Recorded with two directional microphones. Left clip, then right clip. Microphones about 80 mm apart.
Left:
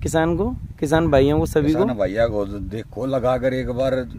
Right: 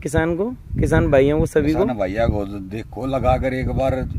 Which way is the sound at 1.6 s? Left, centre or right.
Left.